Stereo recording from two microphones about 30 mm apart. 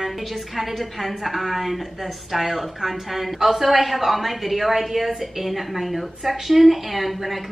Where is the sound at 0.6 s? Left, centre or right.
Centre.